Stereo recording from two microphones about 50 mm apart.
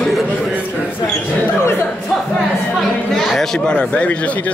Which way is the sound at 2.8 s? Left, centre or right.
Centre.